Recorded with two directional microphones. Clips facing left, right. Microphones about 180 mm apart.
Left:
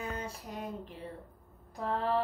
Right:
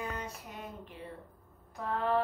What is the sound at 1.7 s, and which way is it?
Speech, 35° left (ahead or behind).